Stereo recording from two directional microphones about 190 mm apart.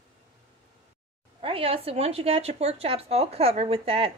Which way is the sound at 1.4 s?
30° right (ahead or behind).